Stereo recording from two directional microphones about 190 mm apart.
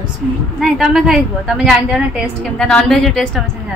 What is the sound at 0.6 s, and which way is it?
A woman's voice, centre (ahead or behind).